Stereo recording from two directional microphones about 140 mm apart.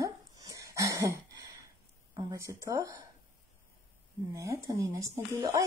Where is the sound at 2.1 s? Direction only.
25° right (ahead or behind).